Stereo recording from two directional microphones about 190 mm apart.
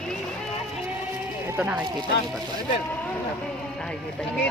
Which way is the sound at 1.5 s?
10° right (ahead or behind).